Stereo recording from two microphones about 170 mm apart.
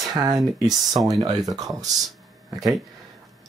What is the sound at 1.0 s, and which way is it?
Speech, 20° right (ahead or behind).